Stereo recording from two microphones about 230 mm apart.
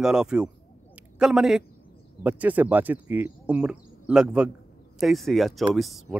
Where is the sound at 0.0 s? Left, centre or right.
Centre.